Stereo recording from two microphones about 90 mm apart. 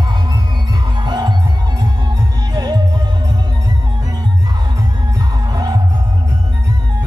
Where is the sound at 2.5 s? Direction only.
50° right (ahead or behind).